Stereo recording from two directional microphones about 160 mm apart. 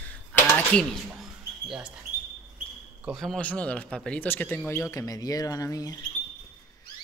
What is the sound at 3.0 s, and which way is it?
Speech, centre (ahead or behind).